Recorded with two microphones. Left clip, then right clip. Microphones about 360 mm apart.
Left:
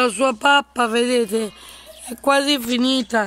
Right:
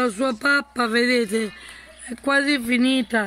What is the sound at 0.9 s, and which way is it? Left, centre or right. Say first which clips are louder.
Speech: even; left.